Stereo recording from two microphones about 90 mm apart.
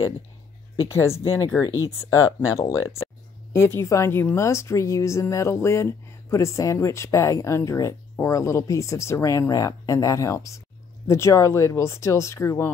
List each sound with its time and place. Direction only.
0.8 s a woman's voice: 30° left (ahead or behind)